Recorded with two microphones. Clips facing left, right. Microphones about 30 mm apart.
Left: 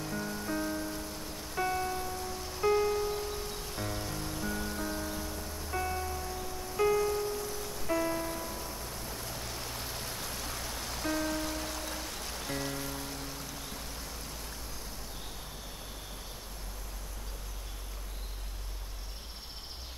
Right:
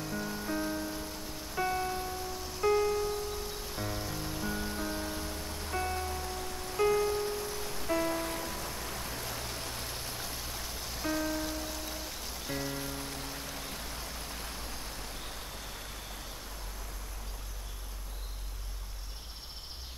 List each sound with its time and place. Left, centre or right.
0.0 s music: centre; by 6.5 s right
6.8 s music: centre
7.1 s music: centre
8.6 s music: right
9.1 s vehicle: right
9.4 s a sound: centre
10.4 s rain on surface: centre
12.4 s music: centre
13.6 s a sound: right